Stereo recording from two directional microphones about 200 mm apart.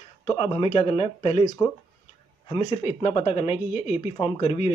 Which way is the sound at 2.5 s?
30° left (ahead or behind).